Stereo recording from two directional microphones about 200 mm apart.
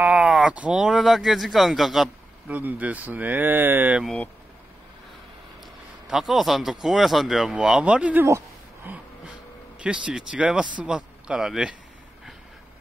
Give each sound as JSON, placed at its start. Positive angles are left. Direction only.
{"t": 0.0, "sound": "speech", "side_deg": -5}
{"t": 6.0, "sound": "speech", "side_deg": 0}